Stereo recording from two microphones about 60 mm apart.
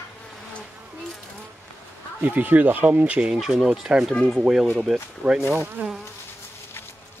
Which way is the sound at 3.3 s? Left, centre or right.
Centre.